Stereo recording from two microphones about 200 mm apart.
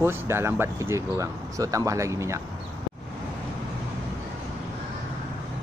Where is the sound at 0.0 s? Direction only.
10° right (ahead or behind).